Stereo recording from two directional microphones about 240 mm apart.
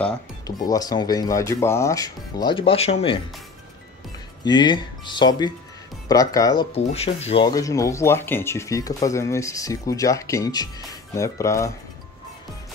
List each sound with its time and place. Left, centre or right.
0.5 s speech: centre
4.5 s speech: centre